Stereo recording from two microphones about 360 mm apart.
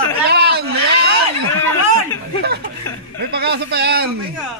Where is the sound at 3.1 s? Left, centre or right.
Right.